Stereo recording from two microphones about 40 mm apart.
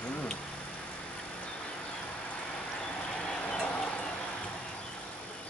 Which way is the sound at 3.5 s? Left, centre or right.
Left.